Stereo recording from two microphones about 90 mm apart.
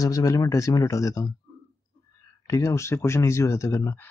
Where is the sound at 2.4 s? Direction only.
35° left (ahead or behind).